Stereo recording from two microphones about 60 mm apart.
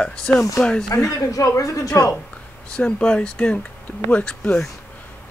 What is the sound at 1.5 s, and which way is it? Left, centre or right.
Speech, left.